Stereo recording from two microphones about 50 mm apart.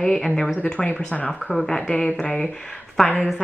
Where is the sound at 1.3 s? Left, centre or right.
Centre.